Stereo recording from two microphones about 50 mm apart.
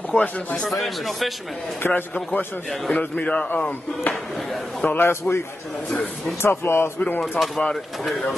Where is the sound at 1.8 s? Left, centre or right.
Left.